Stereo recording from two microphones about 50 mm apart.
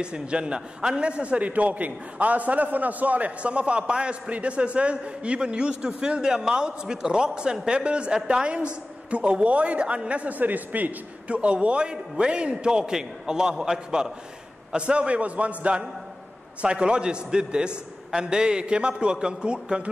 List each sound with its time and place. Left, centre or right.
0.0 s a man's voice: centre
14.7 s a man's voice: right